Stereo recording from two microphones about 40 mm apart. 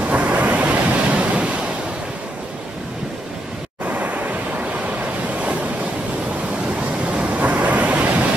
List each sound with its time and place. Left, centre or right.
0.0 s waves: right
3.8 s waves: right
6.8 s waves: right